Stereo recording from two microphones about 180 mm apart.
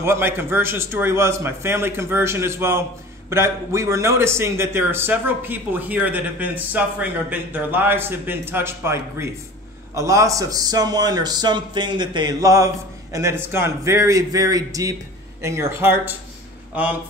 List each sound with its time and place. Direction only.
0.0 s a man's voice: 15° right (ahead or behind)